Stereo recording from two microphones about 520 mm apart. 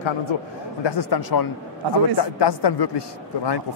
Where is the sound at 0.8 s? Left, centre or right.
Left.